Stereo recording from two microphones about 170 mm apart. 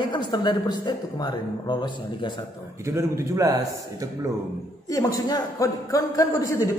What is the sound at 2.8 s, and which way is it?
A man's voice, 15° right (ahead or behind).